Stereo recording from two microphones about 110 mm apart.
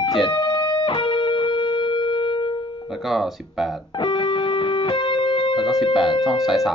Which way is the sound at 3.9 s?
45° left (ahead or behind).